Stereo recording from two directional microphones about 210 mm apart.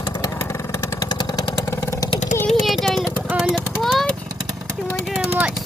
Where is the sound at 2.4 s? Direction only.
Centre (ahead or behind).